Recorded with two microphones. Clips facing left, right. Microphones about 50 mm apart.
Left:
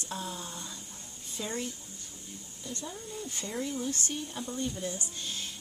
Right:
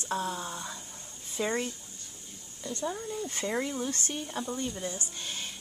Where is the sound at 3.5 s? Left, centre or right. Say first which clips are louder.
Right 2 dB; right.